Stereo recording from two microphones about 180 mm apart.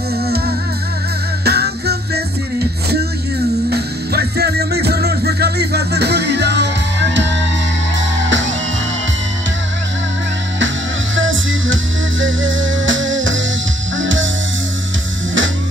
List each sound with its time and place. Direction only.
1.4 s music: 65° right (ahead or behind)
3.7 s music: 65° right (ahead or behind); by 7.3 s 80° right
8.2 s music: 90° right
11.1 s music: 90° right